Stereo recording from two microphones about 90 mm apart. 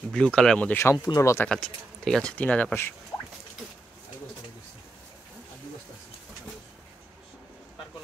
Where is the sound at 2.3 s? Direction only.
15° left (ahead or behind).